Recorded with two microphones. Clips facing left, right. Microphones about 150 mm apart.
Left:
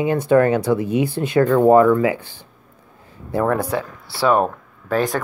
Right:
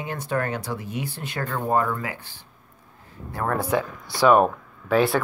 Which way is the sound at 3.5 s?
35° left (ahead or behind).